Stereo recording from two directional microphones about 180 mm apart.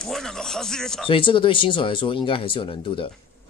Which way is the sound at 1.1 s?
30° left (ahead or behind).